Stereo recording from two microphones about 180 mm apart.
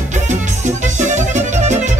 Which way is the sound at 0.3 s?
40° right (ahead or behind).